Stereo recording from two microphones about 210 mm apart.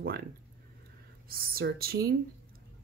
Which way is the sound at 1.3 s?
45° right (ahead or behind).